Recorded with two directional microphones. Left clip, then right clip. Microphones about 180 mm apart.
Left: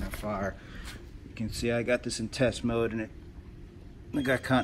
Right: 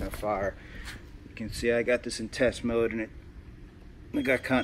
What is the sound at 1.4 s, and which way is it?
Speech, 60° right (ahead or behind).